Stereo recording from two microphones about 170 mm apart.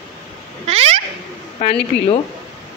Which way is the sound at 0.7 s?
40° right (ahead or behind).